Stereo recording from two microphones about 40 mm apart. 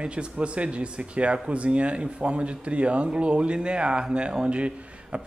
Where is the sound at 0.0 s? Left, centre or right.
Right.